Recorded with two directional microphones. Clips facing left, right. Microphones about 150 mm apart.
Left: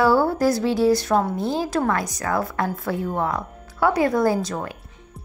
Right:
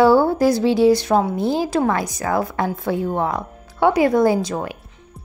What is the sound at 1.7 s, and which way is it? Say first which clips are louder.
A woman's voice: right 3 dB; 25° right (ahead or behind).